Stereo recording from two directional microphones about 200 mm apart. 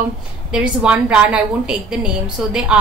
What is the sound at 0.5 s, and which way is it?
A woman's voice, 5° right (ahead or behind).